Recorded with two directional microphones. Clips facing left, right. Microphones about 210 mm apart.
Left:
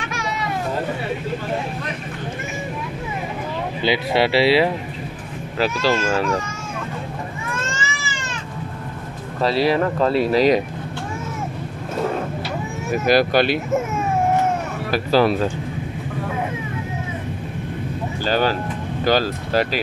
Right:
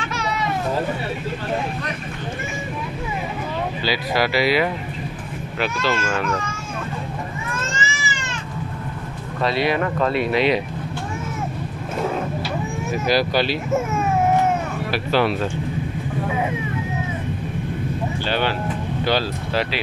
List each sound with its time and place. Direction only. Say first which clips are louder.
3.8 s speech: left 4 dB; 25° left (ahead or behind)
9.4 s speech: left 3 dB; 35° left (ahead or behind)
13.0 s speech: left 4 dB; 50° left (ahead or behind)
14.9 s speech: left 4 dB; 40° left (ahead or behind)
18.2 s speech: left 4 dB; 40° left (ahead or behind)